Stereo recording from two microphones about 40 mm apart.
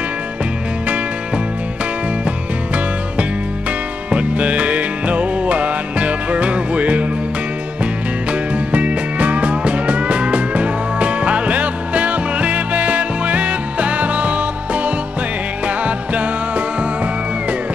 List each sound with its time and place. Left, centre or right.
0.8 s music: right